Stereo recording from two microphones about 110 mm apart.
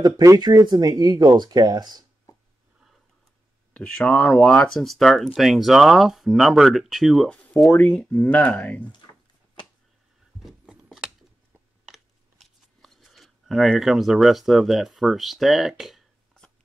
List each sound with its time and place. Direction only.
0.0 s speech: 35° right (ahead or behind)
3.7 s speech: 10° left (ahead or behind)
10.6 s gears: 5° right (ahead or behind)
11.9 s shuffling cards: centre (ahead or behind)